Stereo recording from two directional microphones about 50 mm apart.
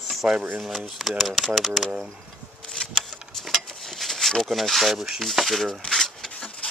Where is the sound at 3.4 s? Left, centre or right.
Centre.